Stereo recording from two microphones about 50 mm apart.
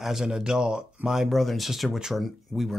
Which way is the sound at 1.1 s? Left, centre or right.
Centre.